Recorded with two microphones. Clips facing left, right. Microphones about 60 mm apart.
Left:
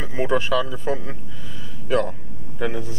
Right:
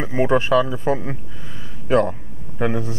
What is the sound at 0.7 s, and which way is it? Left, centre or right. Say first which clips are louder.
A man's voice: right 5 dB; right.